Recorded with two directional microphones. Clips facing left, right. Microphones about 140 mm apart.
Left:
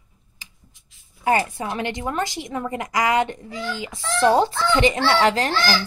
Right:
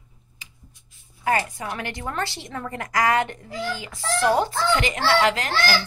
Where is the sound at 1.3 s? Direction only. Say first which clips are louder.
Left 3 dB; 25° left (ahead or behind).